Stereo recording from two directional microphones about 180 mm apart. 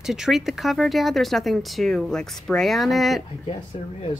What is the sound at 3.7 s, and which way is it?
Speech, 30° left (ahead or behind).